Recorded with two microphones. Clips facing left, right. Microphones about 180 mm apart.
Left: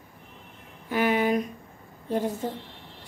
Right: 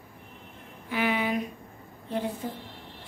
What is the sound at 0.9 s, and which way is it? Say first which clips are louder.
Speech: left 4 dB; 45° left (ahead or behind).